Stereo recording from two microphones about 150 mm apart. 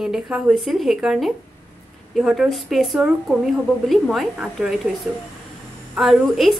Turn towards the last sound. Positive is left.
turn(degrees=0)  # may be behind; listen again after turning